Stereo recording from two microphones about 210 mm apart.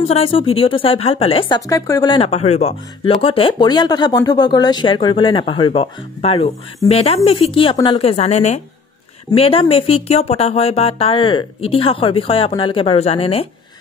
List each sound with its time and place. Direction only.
0.0 s speech: 30° left (ahead or behind)